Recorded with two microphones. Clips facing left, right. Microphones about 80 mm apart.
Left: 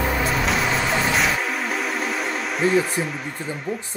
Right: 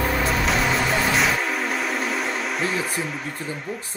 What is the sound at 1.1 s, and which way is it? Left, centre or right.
Music, centre.